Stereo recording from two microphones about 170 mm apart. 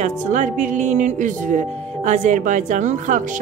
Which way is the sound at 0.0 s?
45° right (ahead or behind).